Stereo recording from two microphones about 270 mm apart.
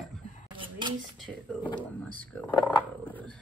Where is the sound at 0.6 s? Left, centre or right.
Centre.